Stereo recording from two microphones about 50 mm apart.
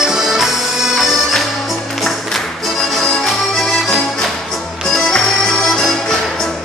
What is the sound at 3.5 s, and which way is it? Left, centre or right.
Accordion, centre.